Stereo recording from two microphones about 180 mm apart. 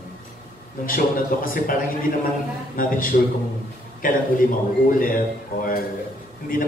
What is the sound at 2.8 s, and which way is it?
A man's voice, 50° left (ahead or behind).